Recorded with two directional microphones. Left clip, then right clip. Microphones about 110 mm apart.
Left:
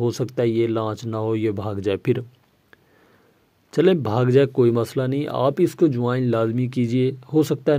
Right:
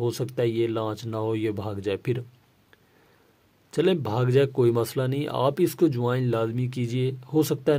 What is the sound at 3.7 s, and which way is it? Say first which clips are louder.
Speech: left 5 dB; 40° left (ahead or behind).